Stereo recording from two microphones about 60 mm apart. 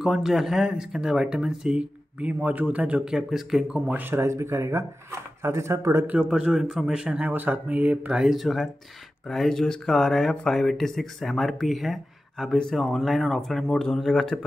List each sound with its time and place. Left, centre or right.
0.0 s speech: centre; by 3.0 s right
3.1 s speech: centre
3.8 s speech: right
4.1 s speech: right
6.1 s speech: centre
7.2 s speech: right
8.2 s speech: centre